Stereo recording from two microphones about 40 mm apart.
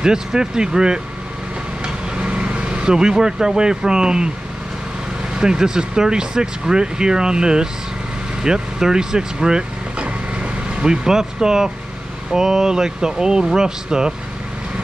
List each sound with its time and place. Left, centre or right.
0.0 s speech: centre
2.1 s speech: right
5.3 s speech: centre